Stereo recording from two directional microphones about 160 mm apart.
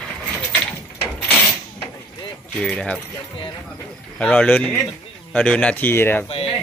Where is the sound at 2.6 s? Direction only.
5° left (ahead or behind).